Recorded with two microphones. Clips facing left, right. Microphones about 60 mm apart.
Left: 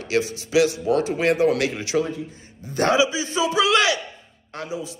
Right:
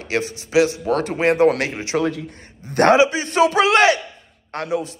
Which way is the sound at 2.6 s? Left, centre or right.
Right.